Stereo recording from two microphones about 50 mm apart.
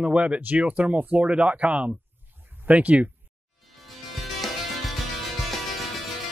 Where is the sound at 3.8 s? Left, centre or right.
Centre.